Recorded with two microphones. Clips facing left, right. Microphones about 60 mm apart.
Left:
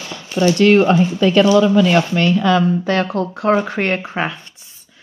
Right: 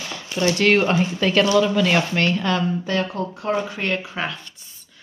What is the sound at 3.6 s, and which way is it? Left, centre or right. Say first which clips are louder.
Speech: left 6 dB; left.